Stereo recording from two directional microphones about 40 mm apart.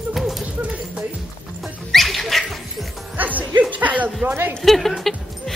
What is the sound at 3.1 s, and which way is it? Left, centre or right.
Speech, right.